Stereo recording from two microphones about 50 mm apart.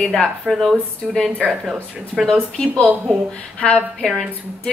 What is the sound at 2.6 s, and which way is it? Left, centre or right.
A woman's voice, centre.